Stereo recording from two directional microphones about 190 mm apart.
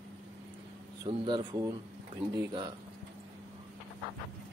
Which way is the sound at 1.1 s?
25° right (ahead or behind).